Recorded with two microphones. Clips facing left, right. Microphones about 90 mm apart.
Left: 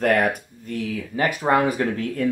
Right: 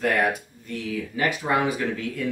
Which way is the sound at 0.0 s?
50° left (ahead or behind).